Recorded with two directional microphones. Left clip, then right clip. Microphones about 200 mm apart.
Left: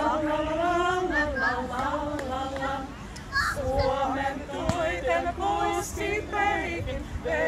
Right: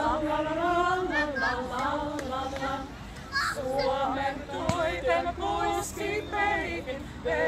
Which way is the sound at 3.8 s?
5° left (ahead or behind).